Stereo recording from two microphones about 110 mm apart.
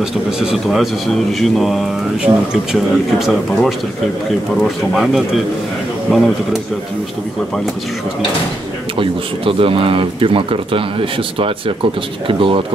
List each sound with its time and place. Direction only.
0.0 s a man's voice: 5° right (ahead or behind)
8.9 s speech: 55° right (ahead or behind)